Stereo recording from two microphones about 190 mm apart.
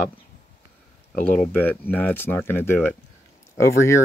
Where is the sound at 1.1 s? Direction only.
5° left (ahead or behind).